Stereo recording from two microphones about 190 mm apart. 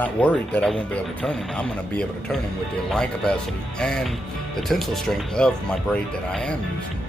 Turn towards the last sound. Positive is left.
turn(degrees=5)  # may be behind; listen again after turning